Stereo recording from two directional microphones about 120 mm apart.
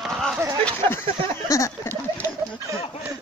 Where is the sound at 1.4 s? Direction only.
25° left (ahead or behind).